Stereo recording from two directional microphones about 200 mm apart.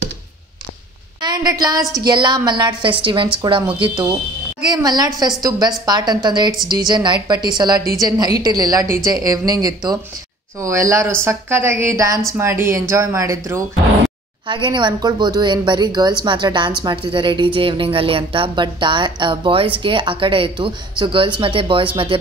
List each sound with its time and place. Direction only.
1.2 s a woman's voice: 20° right (ahead or behind)